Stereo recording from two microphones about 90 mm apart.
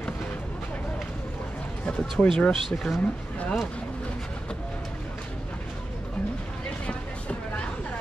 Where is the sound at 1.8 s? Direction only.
10° left (ahead or behind).